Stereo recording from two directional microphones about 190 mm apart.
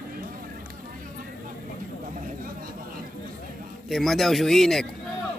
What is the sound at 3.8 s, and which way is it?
Speech, centre (ahead or behind).